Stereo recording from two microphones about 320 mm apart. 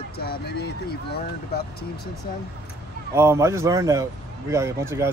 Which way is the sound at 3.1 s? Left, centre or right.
Centre.